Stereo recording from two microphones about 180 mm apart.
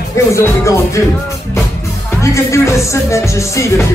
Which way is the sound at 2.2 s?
15° left (ahead or behind).